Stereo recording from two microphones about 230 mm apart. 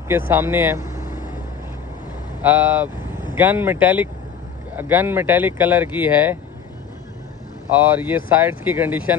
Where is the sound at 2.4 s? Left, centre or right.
Centre.